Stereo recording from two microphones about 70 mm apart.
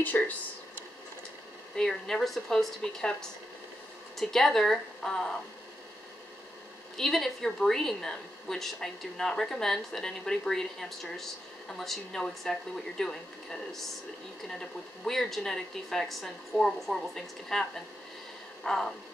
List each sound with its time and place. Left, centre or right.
0.0 s speech: left
1.8 s a woman's voice: centre
7.0 s a woman's voice: centre
18.6 s vehicle: centre